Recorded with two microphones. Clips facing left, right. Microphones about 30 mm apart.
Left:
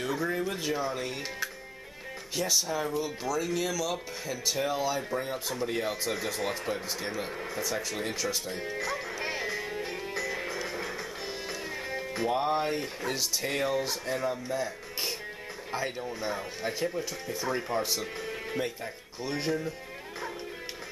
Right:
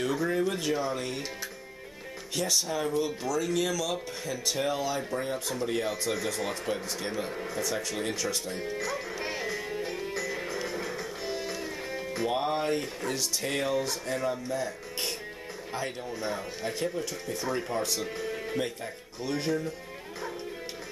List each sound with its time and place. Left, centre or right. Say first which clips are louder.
0.0 s speech: right 3 dB; centre
7.2 s music: right 1 dB; centre
12.3 s speech: left 1 dB; centre
15.8 s speech: left 1 dB; centre
16.2 s speech: right 2 dB; centre
18.0 s music: right 2 dB; centre
19.2 s speech: right 1 dB; centre